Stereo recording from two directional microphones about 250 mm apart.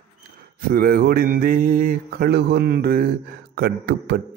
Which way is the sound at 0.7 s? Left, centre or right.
Right.